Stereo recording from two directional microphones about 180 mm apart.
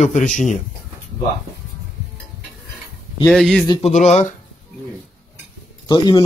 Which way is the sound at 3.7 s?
35° left (ahead or behind).